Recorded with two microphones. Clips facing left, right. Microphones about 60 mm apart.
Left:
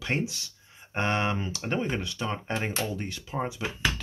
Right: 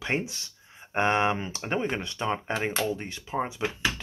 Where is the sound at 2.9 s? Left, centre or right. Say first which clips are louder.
Right 2 dB; centre.